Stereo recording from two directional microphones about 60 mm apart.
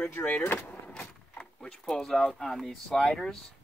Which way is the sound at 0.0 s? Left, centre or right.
Left.